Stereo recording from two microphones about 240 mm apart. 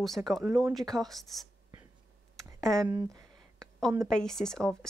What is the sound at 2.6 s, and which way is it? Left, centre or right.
Speech, centre.